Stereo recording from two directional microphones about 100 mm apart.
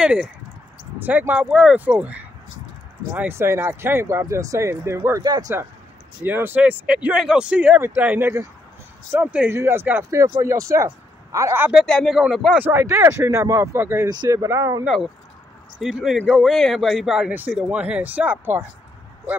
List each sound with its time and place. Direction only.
0.0 s speech: 10° right (ahead or behind); by 5.2 s 30° right (ahead or behind)
5.2 s speech: 40° right (ahead or behind)
6.2 s speech: 20° right (ahead or behind)
9.5 s speech: 25° right (ahead or behind)
11.7 s speech: 5° left (ahead or behind)
12.5 s speech: 20° right (ahead or behind)
14.0 s speech: 45° right (ahead or behind)
14.3 s speech: 30° right (ahead or behind)
15.8 s speech: 5° right (ahead or behind)
17.3 s speech: 20° right (ahead or behind)